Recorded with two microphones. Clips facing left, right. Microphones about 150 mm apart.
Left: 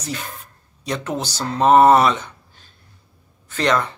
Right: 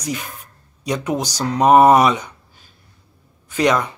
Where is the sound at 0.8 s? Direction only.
10° right (ahead or behind).